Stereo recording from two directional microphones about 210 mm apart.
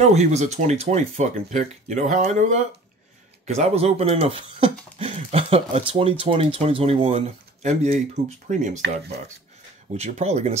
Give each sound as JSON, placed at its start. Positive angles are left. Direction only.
{"t": 0.0, "sound": "speech", "side_deg": -35}
{"t": 9.9, "sound": "speech", "side_deg": -30}